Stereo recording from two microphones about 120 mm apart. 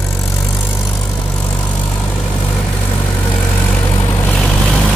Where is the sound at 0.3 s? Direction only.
15° left (ahead or behind).